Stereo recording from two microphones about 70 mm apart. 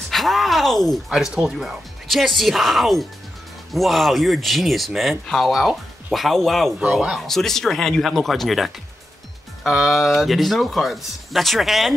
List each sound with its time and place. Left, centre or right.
0.1 s speech: centre
6.8 s speech: centre
7.2 s speech: centre